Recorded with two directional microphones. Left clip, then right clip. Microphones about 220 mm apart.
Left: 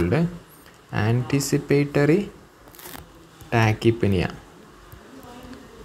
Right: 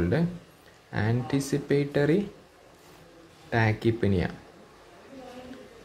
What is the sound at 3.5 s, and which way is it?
Speech, 10° left (ahead or behind).